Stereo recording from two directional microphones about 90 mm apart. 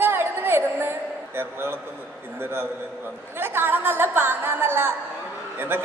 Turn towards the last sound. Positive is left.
turn(degrees=-25)  # may be behind; listen again after turning